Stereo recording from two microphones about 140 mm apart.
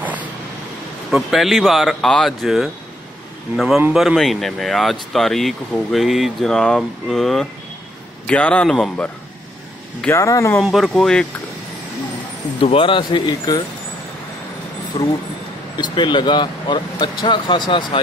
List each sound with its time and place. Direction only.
1.1 s a man's voice: centre (ahead or behind)
10.1 s speech: 20° left (ahead or behind)
10.6 s speech: centre (ahead or behind)
12.5 s speech: 40° left (ahead or behind)
15.8 s speech: 35° left (ahead or behind)